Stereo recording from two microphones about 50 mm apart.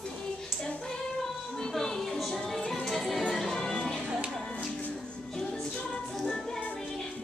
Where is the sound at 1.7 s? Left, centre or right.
Centre.